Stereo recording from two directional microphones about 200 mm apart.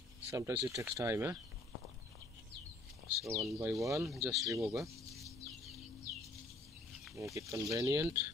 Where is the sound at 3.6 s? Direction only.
15° right (ahead or behind).